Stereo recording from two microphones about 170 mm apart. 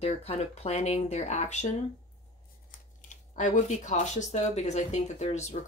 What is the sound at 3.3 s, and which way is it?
Speech, 45° left (ahead or behind).